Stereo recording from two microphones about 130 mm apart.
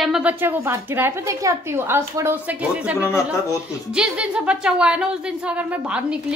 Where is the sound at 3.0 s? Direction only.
20° left (ahead or behind).